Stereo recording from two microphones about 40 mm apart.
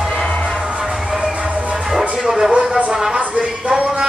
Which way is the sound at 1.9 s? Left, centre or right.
Centre.